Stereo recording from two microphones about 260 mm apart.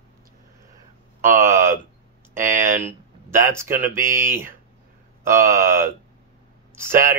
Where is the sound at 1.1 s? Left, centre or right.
Centre.